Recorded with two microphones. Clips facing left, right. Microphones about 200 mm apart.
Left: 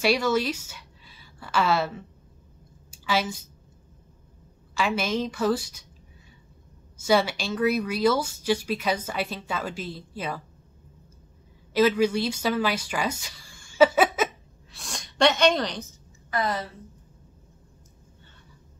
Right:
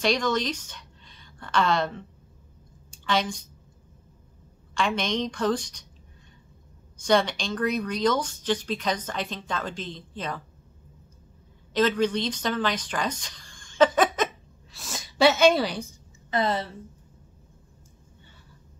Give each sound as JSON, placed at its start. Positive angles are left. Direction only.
{"t": 0.0, "sound": "a woman's voice", "side_deg": 5}
{"t": 4.7, "sound": "a woman's voice", "side_deg": 5}
{"t": 7.0, "sound": "speech", "side_deg": 5}
{"t": 11.7, "sound": "speech", "side_deg": 10}
{"t": 16.3, "sound": "speech", "side_deg": -25}